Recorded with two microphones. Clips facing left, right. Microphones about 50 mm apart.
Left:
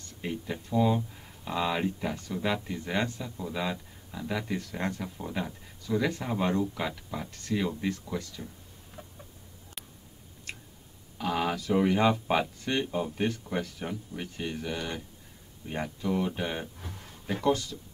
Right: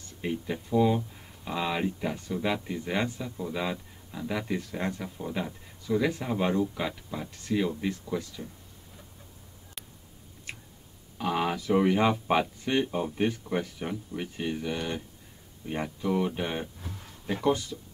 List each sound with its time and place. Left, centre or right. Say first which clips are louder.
0.2 s speech: right 3 dB; centre
11.1 s speech: right 1 dB; centre